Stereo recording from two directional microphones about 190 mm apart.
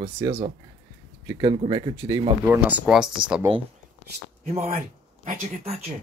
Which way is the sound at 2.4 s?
10° right (ahead or behind).